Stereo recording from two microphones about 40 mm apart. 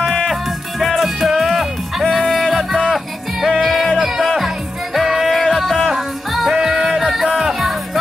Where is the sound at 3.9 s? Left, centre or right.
Centre.